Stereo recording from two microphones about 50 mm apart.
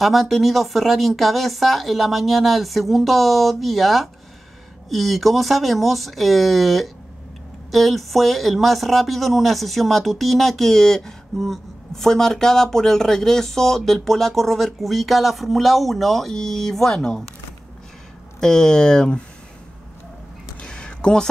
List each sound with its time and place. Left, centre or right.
0.0 s speech: centre
18.4 s speech: centre
20.6 s a sound: left